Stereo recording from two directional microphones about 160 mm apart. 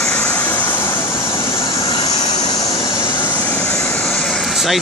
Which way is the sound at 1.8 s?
30° left (ahead or behind).